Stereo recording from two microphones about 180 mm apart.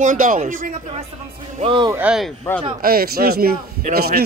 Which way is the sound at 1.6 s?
30° right (ahead or behind).